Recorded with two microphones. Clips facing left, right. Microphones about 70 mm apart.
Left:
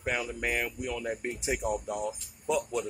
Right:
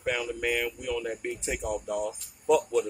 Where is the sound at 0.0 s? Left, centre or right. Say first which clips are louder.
Right 2 dB; centre.